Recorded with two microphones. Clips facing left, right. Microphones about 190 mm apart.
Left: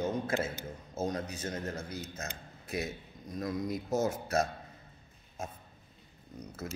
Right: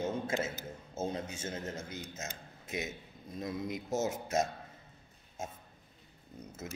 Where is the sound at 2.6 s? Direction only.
20° right (ahead or behind).